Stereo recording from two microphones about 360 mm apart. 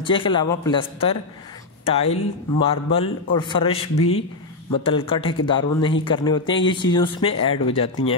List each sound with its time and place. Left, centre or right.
0.0 s speech: centre